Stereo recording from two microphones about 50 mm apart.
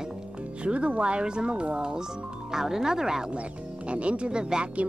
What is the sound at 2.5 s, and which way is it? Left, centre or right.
Speech, centre.